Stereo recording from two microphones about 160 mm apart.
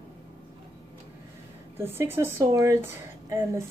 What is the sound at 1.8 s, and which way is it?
A woman's voice, 15° right (ahead or behind).